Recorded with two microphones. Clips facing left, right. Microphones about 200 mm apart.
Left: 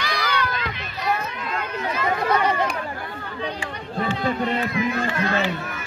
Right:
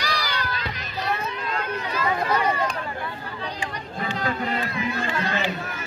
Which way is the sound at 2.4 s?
80° left.